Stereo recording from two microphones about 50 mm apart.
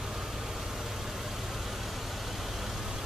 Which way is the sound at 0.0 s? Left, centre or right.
Centre.